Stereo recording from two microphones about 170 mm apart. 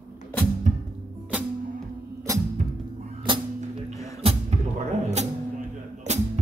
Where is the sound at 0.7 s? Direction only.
50° right (ahead or behind).